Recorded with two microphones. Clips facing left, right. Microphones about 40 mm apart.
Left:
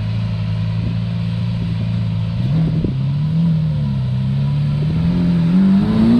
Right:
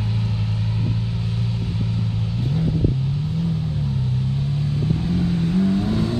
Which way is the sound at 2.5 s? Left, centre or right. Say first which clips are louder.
Left 3 dB; centre.